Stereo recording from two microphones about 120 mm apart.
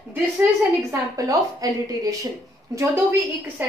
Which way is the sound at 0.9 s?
30° right (ahead or behind).